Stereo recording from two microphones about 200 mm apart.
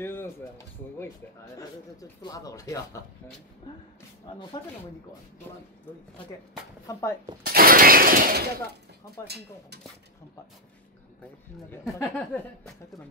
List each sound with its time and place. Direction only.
0.0 s speech: 10° left (ahead or behind)
6.9 s speech: 15° left (ahead or behind)
7.4 s a sound: 45° right (ahead or behind)
11.8 s speech: centre (ahead or behind)